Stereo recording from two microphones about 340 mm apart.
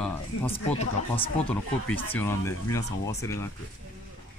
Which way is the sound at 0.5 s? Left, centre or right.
Centre.